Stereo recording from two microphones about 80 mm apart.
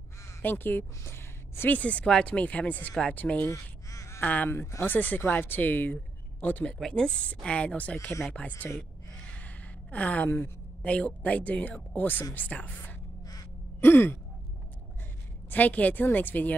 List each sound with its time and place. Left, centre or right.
0.4 s a woman's voice: left
1.8 s speech: centre
3.4 s crow: left
4.2 s speech: centre
8.7 s a sound: centre
10.9 s speech: centre
13.7 s sigh: left
15.5 s speech: centre